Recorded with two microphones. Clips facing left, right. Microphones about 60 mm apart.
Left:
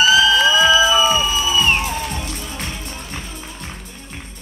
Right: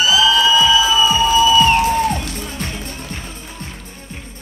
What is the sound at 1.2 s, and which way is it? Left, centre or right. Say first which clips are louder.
Music: right 7 dB; right.